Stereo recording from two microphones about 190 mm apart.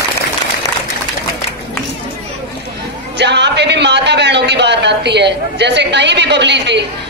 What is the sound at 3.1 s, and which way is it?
A man's voice, 65° right (ahead or behind).